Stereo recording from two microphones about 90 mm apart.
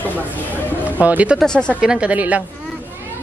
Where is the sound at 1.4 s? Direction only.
10° left (ahead or behind).